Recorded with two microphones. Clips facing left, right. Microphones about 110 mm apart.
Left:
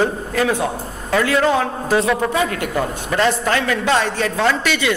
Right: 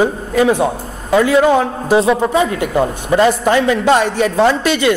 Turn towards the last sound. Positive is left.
turn(degrees=-25)  # may be behind; listen again after turning